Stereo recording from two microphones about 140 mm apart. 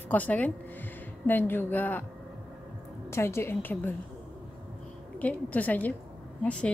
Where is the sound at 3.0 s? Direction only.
20° left (ahead or behind).